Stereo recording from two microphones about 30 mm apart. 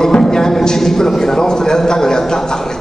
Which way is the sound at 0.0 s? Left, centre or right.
Centre.